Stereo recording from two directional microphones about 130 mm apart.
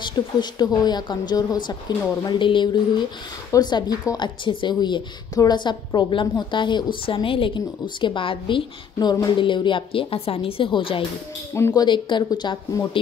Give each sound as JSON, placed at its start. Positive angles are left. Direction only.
{"t": 0.0, "sound": "a woman's voice", "side_deg": 35}
{"t": 11.5, "sound": "speech", "side_deg": 20}
{"t": 11.8, "sound": "a woman's voice", "side_deg": 35}